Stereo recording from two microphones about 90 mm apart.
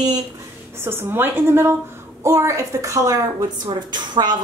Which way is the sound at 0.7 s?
25° right (ahead or behind).